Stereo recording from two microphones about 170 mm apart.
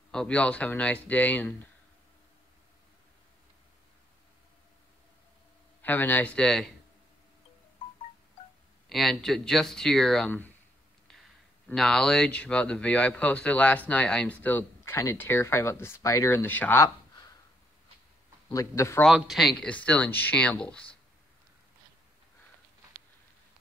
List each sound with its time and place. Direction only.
0.1 s speech: 5° left (ahead or behind)
5.8 s speech: 10° left (ahead or behind)
8.8 s speech: centre (ahead or behind)
18.5 s speech: 20° left (ahead or behind)
19.0 s speech: centre (ahead or behind)